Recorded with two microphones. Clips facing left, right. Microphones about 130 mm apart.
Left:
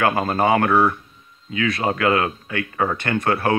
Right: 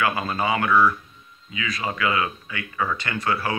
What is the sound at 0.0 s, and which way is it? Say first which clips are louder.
Speech: left 5 dB; 50° left (ahead or behind).